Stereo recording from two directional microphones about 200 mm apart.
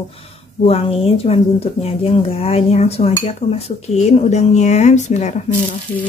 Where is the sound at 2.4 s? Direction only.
35° left (ahead or behind).